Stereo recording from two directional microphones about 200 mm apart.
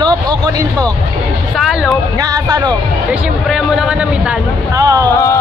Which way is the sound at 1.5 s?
Centre (ahead or behind).